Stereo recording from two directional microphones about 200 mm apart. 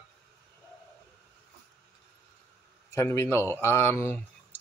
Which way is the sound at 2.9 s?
15° left (ahead or behind).